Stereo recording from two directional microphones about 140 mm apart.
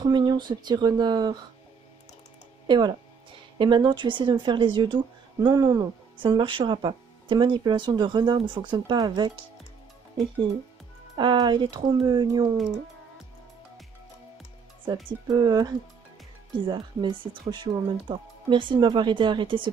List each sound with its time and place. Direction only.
0.0 s speech: 30° right (ahead or behind)
2.6 s speech: 35° right (ahead or behind)
11.1 s speech: 30° right (ahead or behind)
15.0 s speech: 30° right (ahead or behind)